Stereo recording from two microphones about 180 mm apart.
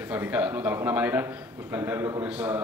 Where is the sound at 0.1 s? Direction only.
10° right (ahead or behind).